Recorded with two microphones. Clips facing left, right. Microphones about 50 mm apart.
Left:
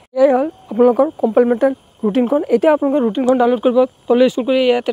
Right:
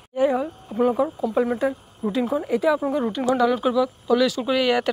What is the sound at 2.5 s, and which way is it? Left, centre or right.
Speech, left.